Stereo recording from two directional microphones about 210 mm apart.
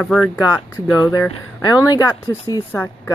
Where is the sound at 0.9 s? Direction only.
15° left (ahead or behind).